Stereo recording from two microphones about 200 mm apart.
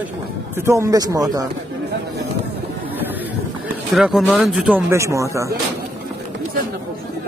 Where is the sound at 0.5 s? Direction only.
15° right (ahead or behind).